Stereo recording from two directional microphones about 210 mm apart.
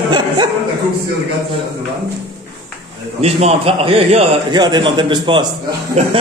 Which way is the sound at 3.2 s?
30° right (ahead or behind).